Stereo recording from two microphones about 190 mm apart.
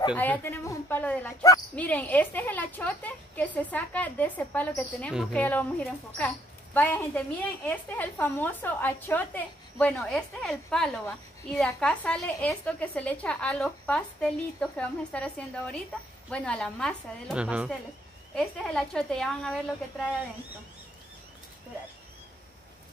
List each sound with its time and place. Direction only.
0.2 s a woman's voice: 10° left (ahead or behind)
5.4 s a woman's voice: 10° left (ahead or behind)
17.4 s a woman's voice: 5° right (ahead or behind)
18.3 s a woman's voice: 5° left (ahead or behind)